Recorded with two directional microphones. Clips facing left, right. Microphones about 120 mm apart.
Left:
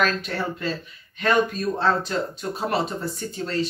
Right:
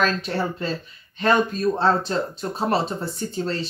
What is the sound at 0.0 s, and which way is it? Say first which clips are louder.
Speech: right 1 dB; 30° right (ahead or behind).